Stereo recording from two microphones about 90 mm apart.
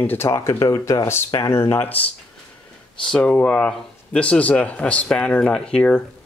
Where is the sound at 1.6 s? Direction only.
25° left (ahead or behind).